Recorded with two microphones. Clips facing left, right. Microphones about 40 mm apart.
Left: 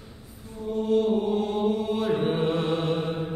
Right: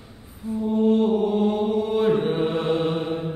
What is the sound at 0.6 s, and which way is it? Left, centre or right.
Mantra, right.